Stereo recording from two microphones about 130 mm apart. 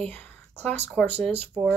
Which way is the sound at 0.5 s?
55° right (ahead or behind).